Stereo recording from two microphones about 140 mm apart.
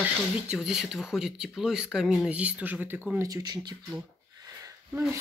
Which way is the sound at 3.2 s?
25° right (ahead or behind).